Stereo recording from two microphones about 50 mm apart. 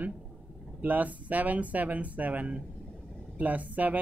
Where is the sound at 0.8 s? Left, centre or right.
Right.